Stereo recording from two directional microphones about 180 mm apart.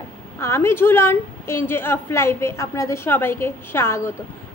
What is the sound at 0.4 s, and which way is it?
A woman's voice, 15° left (ahead or behind).